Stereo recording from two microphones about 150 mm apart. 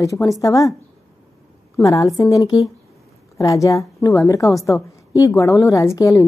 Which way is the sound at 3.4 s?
20° left (ahead or behind).